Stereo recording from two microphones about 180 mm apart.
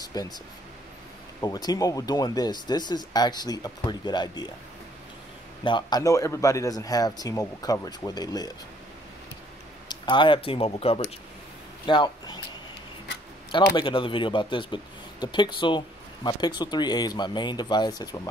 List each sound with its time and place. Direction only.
0.0 s speech: 20° left (ahead or behind)
1.4 s speech: 20° left (ahead or behind)
5.6 s speech: 25° left (ahead or behind)
9.8 s speech: 25° left (ahead or behind)
13.7 s speech: 25° left (ahead or behind)